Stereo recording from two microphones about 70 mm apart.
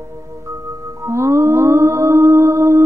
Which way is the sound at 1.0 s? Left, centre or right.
Right.